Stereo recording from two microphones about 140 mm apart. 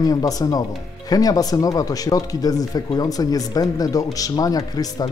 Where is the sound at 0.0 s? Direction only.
25° left (ahead or behind).